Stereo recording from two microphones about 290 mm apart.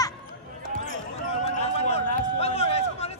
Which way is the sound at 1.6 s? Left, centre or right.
Left.